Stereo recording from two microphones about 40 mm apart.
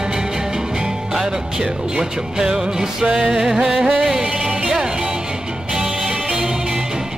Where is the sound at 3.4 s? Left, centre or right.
Centre.